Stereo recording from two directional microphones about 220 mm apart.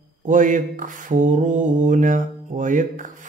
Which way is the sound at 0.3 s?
35° right (ahead or behind).